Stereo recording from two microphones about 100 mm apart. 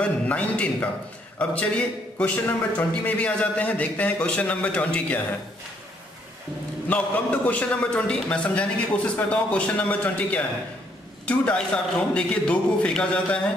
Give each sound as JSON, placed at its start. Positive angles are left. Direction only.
{"t": 0.0, "sound": "a man's voice", "side_deg": 10}
{"t": 6.9, "sound": "a man's voice", "side_deg": 15}